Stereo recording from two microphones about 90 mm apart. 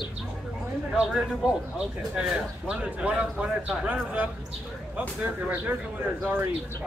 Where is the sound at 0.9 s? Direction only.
10° right (ahead or behind).